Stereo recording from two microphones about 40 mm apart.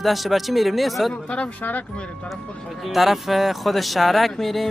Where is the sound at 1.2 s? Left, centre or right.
Left.